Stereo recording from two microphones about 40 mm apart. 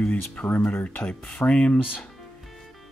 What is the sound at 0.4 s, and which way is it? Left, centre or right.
Speech, left.